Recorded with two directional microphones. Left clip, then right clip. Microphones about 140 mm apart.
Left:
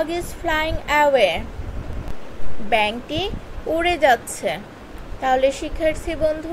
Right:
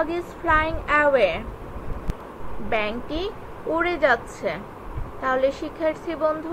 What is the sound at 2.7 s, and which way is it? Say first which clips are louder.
A woman's voice: left 6 dB; 30° left (ahead or behind).